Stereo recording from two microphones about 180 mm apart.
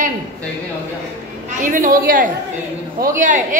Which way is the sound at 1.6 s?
50° right (ahead or behind).